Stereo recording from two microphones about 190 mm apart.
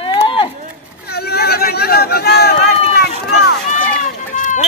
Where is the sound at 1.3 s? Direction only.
55° left (ahead or behind).